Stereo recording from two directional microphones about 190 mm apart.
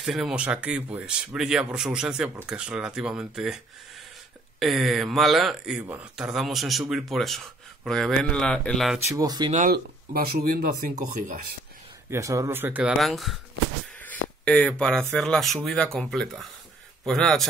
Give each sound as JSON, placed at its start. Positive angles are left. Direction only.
{"t": 0.0, "sound": "speech", "side_deg": -5}
{"t": 9.0, "sound": "speech", "side_deg": -20}
{"t": 9.5, "sound": "speech", "side_deg": -45}
{"t": 12.1, "sound": "speech", "side_deg": -15}
{"t": 14.4, "sound": "speech", "side_deg": 5}